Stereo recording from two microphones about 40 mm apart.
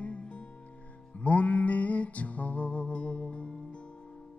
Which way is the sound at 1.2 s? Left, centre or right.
Left.